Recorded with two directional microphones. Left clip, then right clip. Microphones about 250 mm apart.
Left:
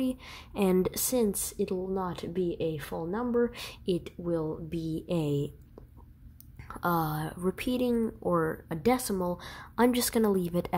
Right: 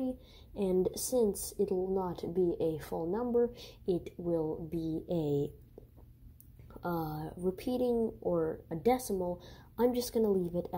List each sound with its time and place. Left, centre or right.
0.0 s a woman's voice: centre
6.7 s a woman's voice: centre
7.9 s a woman's voice: left